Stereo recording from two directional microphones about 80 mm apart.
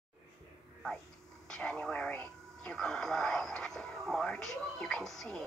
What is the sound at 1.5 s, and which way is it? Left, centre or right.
Speech, centre.